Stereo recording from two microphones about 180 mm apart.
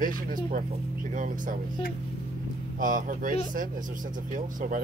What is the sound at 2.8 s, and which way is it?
Speech, 50° right (ahead or behind).